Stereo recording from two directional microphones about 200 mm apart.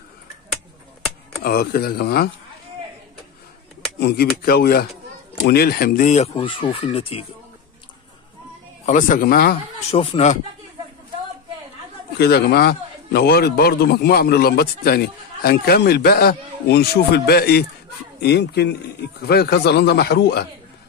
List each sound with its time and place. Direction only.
1.4 s a man's voice: 50° left (ahead or behind)
4.0 s a man's voice: 50° left (ahead or behind); by 7.2 s 30° left (ahead or behind)
8.8 s a man's voice: 40° left (ahead or behind)
9.8 s speech: 30° left (ahead or behind)
12.2 s a man's voice: 55° left (ahead or behind)